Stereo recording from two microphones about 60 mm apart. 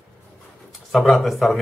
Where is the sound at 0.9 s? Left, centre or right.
Centre.